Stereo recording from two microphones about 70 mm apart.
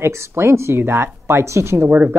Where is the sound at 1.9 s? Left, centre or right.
Right.